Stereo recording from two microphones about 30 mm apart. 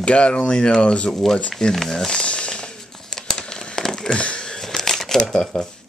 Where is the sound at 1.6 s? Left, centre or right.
Centre.